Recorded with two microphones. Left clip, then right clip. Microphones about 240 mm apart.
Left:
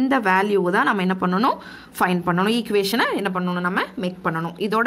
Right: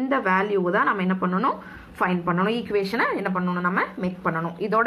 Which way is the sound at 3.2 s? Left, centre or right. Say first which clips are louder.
Left 1 dB; left.